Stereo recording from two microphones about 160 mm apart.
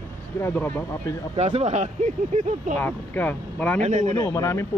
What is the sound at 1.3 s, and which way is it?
Speech, 45° right (ahead or behind).